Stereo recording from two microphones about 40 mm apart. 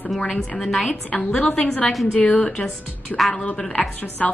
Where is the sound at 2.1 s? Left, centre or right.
Left.